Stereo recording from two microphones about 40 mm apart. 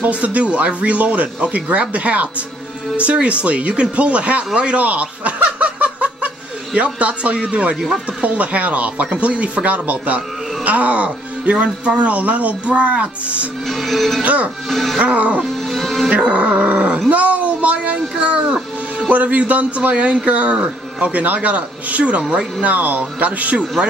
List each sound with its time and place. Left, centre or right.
0.0 s speech: right
4.6 s snicker: right
8.2 s speech: right
13.7 s music: centre
14.2 s speech: right
14.7 s music: centre
15.0 s speech: right
15.7 s speech: centre
16.1 s dog: right
17.1 s speech: right
19.0 s speech: right
21.0 s speech: right